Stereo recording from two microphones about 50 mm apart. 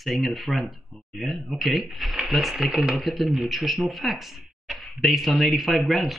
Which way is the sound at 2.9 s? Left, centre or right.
Centre.